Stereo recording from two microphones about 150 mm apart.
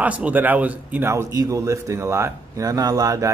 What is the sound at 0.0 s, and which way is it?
A man's voice, 10° right (ahead or behind).